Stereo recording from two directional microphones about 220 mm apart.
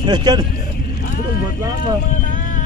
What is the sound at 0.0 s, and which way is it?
Speech, 20° right (ahead or behind).